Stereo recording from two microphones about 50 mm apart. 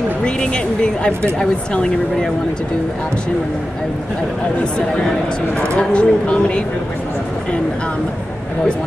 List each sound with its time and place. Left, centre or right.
0.2 s speech: centre
5.6 s speech: left